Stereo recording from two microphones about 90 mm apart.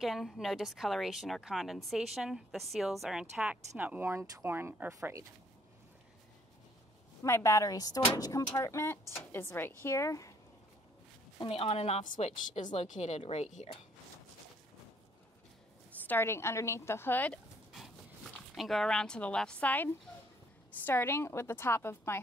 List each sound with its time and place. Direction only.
0.0 s a woman's voice: centre (ahead or behind); by 4.1 s 20° right (ahead or behind)
4.1 s speech: 30° right (ahead or behind)
7.2 s a woman's voice: 30° left (ahead or behind)
11.4 s speech: 90° left
16.1 s a woman's voice: 30° left (ahead or behind)
18.5 s a woman's voice: centre (ahead or behind); by 22.2 s 30° left (ahead or behind)